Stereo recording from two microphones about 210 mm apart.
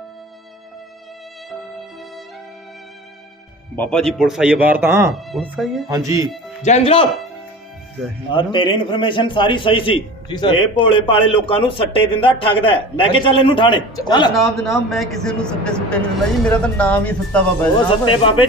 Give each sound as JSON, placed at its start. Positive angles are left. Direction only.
{"t": 3.7, "sound": "speech", "side_deg": 5}
{"t": 5.9, "sound": "speech", "side_deg": -15}
{"t": 6.6, "sound": "a man's voice", "side_deg": 30}
{"t": 8.4, "sound": "a man's voice", "side_deg": 25}
{"t": 14.3, "sound": "speech", "side_deg": 0}
{"t": 17.7, "sound": "a man's voice", "side_deg": 25}